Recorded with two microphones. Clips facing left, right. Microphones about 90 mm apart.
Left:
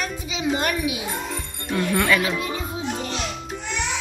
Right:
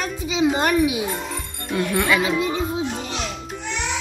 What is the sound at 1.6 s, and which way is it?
Speech, 5° right (ahead or behind).